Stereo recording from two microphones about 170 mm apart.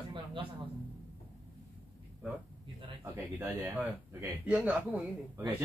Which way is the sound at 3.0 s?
15° right (ahead or behind).